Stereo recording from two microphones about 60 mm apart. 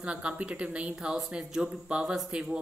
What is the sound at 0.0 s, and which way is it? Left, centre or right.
Speech, centre.